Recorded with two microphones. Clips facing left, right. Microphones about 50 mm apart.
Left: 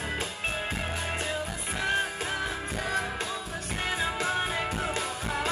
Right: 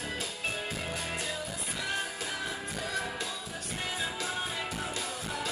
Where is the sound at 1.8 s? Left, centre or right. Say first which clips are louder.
Left 7 dB; left.